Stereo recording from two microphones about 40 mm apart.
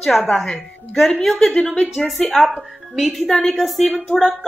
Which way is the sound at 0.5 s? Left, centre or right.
Centre.